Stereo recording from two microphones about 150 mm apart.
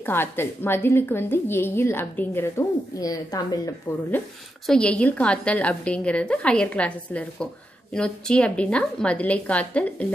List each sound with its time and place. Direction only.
0.0 s a woman's voice: 15° left (ahead or behind)
4.6 s a woman's voice: 5° left (ahead or behind)